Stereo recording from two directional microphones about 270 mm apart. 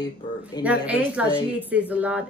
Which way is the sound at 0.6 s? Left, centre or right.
Centre.